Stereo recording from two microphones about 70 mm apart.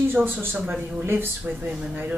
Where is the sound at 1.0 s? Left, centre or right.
Right.